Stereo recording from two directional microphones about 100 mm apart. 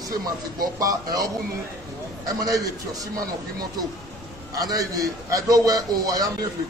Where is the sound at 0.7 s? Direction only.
35° right (ahead or behind).